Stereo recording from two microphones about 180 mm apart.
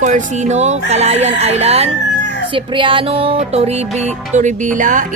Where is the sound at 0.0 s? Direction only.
40° right (ahead or behind).